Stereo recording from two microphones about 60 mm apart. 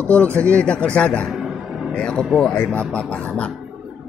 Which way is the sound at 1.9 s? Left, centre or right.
Centre.